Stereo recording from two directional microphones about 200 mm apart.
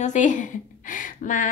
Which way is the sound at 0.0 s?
40° left (ahead or behind).